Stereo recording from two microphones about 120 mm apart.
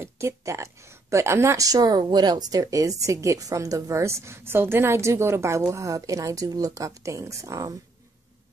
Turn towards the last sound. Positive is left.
turn(degrees=-25)  # may be behind; listen again after turning